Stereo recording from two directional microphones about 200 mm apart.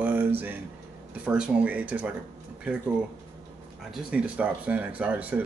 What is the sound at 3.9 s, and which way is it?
Speech, 5° right (ahead or behind).